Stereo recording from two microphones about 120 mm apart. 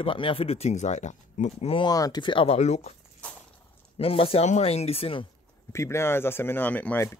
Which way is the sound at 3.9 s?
50° left (ahead or behind).